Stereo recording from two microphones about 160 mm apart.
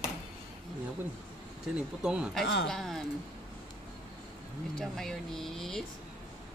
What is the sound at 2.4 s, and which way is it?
Speech, 90° left.